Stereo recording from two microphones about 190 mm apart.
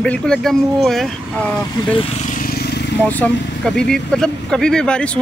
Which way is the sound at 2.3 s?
50° left (ahead or behind).